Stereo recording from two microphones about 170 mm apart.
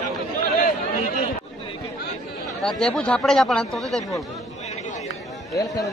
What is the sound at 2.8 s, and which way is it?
Speech, 5° left (ahead or behind).